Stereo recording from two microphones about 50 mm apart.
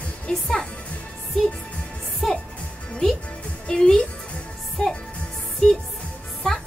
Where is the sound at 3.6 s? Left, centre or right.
Centre.